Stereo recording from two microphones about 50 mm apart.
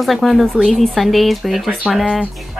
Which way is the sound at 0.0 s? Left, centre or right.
Centre.